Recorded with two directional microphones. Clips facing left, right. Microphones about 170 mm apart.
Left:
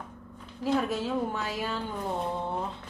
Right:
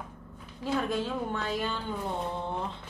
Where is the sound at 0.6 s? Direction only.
10° left (ahead or behind).